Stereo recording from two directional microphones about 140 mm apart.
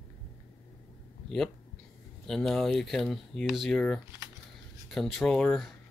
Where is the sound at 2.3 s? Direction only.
Centre (ahead or behind).